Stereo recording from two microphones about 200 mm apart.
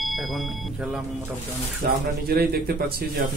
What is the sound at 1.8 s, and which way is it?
Speech, 50° right (ahead or behind).